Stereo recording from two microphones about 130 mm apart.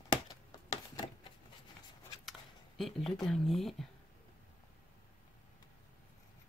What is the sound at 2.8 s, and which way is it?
Speech, centre (ahead or behind).